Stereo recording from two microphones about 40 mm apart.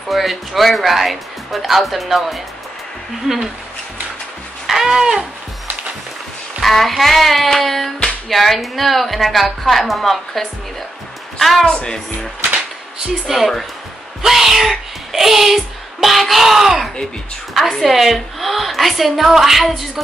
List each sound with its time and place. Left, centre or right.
0.1 s speech: centre
4.6 s babbling: centre
6.6 s speech: centre
11.6 s speech: left
13.3 s speech: centre